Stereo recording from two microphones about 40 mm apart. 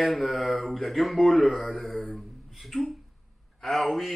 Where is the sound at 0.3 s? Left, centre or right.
Centre.